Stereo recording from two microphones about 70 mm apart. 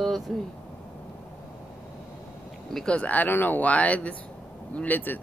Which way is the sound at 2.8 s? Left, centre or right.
Centre.